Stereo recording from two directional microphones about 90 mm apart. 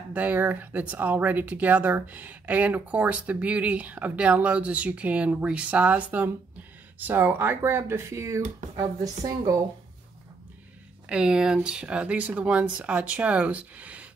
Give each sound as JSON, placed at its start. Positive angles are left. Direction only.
{"t": 0.1, "sound": "speech", "side_deg": -20}
{"t": 11.1, "sound": "speech", "side_deg": -10}